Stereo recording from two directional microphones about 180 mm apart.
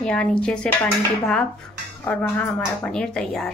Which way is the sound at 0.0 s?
5° left (ahead or behind).